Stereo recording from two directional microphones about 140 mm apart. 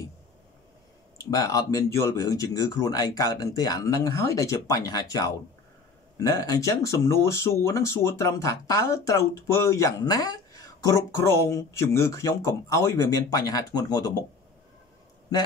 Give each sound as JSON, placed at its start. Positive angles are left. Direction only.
{"t": 1.3, "sound": "speech", "side_deg": 25}